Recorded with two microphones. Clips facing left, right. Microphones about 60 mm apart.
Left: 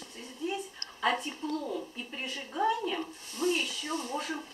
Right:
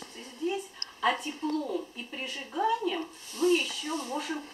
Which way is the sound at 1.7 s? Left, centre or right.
Centre.